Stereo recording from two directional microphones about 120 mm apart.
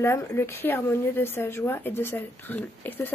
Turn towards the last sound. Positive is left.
turn(degrees=15)  # may be behind; listen again after turning